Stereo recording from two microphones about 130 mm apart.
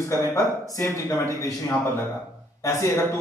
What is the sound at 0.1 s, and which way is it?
Speech, 20° left (ahead or behind).